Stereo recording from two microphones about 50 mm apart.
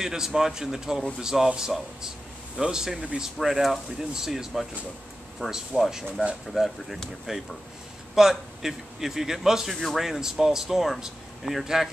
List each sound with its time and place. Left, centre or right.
0.0 s speech: centre
2.5 s speech: centre
5.4 s a man's voice: centre
5.9 s speech: centre